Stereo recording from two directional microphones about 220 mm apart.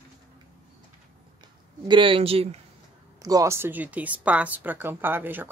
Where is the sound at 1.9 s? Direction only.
25° right (ahead or behind).